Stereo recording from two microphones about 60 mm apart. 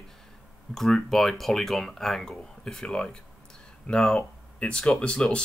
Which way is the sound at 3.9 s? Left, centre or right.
Left.